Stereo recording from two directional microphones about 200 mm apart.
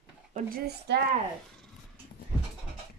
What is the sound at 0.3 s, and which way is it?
Speech, 45° right (ahead or behind).